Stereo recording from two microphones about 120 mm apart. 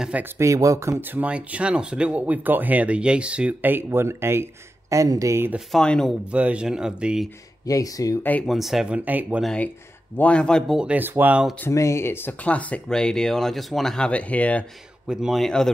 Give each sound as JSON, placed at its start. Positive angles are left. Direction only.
{"t": 0.0, "sound": "speech", "side_deg": -10}
{"t": 0.4, "sound": "speech", "side_deg": -25}
{"t": 5.7, "sound": "a man's voice", "side_deg": 5}
{"t": 6.3, "sound": "speech", "side_deg": -10}
{"t": 7.6, "sound": "speech", "side_deg": 30}
{"t": 8.2, "sound": "speech", "side_deg": 15}
{"t": 8.5, "sound": "speech", "side_deg": 0}
{"t": 9.4, "sound": "a man's voice", "side_deg": 5}
{"t": 10.8, "sound": "speech", "side_deg": -15}
{"t": 11.7, "sound": "speech", "side_deg": 25}
{"t": 15.0, "sound": "a man's voice", "side_deg": 0}